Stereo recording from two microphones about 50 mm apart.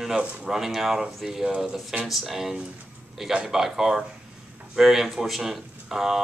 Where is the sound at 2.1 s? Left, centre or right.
Centre.